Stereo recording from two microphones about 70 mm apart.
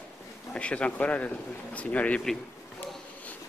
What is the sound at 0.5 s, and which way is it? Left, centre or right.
A man's voice, centre.